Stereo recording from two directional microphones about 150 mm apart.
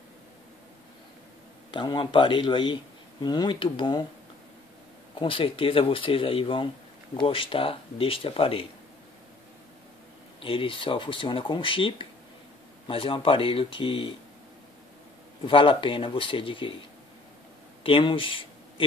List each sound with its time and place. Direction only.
1.7 s speech: 30° left (ahead or behind)
5.2 s speech: 35° left (ahead or behind)
10.4 s speech: 35° left (ahead or behind)
15.4 s speech: 35° left (ahead or behind)
17.8 s speech: 35° left (ahead or behind)